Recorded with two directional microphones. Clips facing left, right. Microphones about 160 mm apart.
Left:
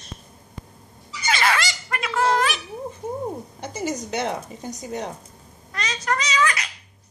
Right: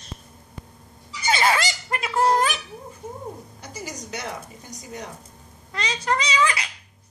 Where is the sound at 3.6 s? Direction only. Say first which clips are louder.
Left 10 dB; 25° left (ahead or behind).